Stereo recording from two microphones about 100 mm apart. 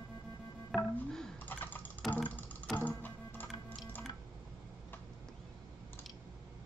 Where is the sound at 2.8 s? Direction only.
15° left (ahead or behind).